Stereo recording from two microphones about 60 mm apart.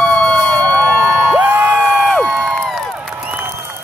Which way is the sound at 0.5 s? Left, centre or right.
Centre.